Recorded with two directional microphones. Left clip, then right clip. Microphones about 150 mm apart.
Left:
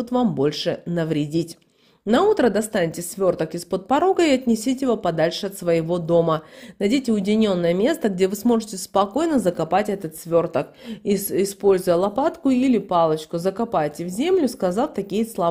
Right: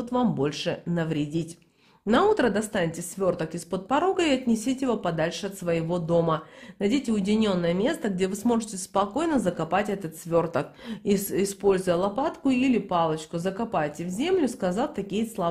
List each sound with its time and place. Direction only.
0.0 s a woman's voice: 30° left (ahead or behind)